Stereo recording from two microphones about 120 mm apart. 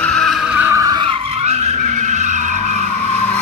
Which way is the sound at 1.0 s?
45° right (ahead or behind).